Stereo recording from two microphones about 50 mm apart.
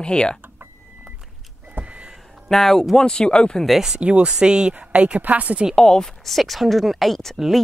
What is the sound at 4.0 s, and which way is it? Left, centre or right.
Speech, right.